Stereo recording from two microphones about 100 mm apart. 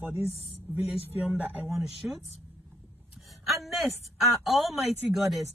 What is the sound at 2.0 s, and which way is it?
Speech, 10° right (ahead or behind).